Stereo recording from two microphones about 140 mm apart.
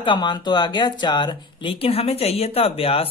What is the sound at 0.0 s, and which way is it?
Speech, 35° left (ahead or behind).